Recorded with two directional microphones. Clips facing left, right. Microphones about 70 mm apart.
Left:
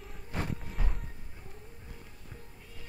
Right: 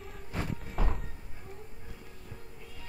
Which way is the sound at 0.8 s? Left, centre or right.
Right.